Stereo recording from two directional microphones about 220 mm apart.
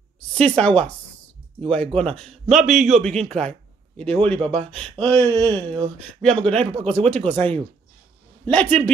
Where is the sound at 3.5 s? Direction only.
5° left (ahead or behind).